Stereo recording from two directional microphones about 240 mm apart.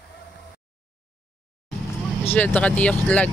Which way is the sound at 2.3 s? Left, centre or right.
Centre.